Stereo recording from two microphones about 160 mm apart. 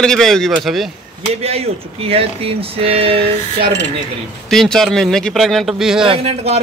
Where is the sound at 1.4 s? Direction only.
40° right (ahead or behind).